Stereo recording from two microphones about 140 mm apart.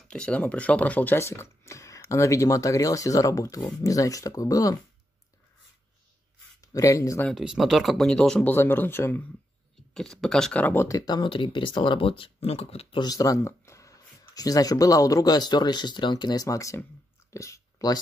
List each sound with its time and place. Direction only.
0.1 s speech: 10° left (ahead or behind); by 4.7 s 25° left (ahead or behind)
6.6 s speech: 25° left (ahead or behind)
7.2 s speech: centre (ahead or behind); by 9.2 s 15° left (ahead or behind)
9.9 s speech: 5° left (ahead or behind); by 13.0 s 45° left (ahead or behind)
13.0 s speech: 25° left (ahead or behind)
17.3 s a sound: 20° left (ahead or behind)